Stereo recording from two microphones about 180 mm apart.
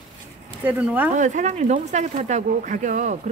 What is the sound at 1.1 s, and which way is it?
Speech, 40° right (ahead or behind).